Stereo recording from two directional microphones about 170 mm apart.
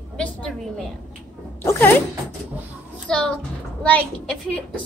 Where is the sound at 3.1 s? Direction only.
5° left (ahead or behind).